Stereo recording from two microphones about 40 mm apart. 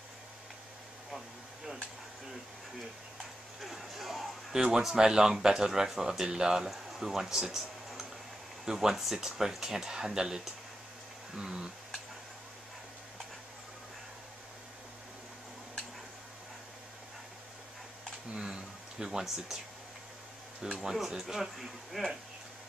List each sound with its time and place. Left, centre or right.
3.6 s speech: centre
6.7 s speech: centre
18.3 s speech: centre
20.8 s speech: centre